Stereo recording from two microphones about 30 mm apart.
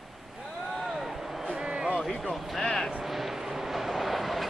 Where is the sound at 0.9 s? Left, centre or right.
Centre.